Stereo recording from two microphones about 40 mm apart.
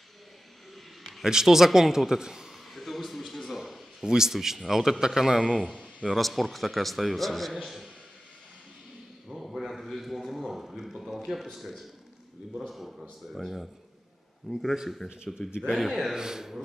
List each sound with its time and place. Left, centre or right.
1.2 s a man's voice: centre
2.7 s a sound: centre
4.0 s a man's voice: centre
5.5 s a man's voice: centre
6.0 s a man's voice: centre
9.3 s a sound: centre
12.6 s a sound: centre
13.2 s a man's voice: centre
16.2 s a man's voice: centre